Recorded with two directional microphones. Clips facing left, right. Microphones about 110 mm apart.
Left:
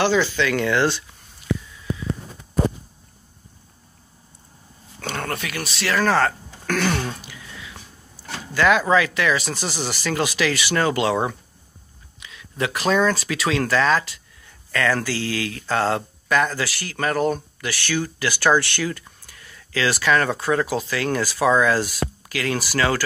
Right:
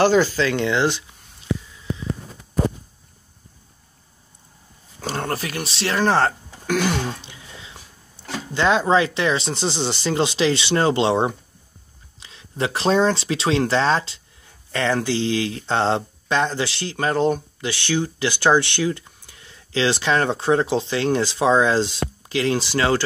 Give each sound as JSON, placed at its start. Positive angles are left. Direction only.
{"t": 0.0, "sound": "speech", "side_deg": -45}
{"t": 0.5, "sound": "speech", "side_deg": -20}
{"t": 5.0, "sound": "speech", "side_deg": -30}
{"t": 6.6, "sound": "throat clearing", "side_deg": -15}
{"t": 7.2, "sound": "a sound", "side_deg": -25}
{"t": 8.5, "sound": "speech", "side_deg": -25}